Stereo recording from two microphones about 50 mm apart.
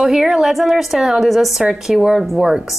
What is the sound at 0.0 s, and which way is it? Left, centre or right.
A woman's voice, centre.